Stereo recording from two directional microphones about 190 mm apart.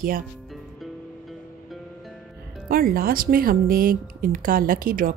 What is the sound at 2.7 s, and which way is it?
A woman's voice, 50° right (ahead or behind).